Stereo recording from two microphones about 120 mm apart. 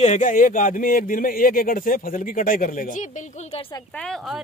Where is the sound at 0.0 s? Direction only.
80° left.